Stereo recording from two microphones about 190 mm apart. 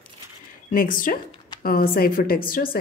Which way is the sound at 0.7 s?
45° left (ahead or behind).